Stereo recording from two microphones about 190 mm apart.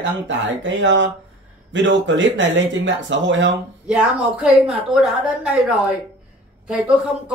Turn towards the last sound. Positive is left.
turn(degrees=-5)  # may be behind; listen again after turning